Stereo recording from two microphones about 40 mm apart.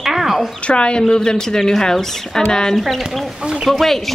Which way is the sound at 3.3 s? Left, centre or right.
Centre.